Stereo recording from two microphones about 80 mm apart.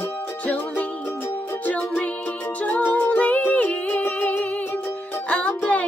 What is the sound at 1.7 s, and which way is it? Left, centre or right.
Music, centre.